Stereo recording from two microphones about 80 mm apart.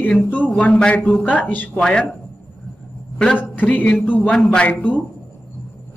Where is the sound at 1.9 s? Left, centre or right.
Centre.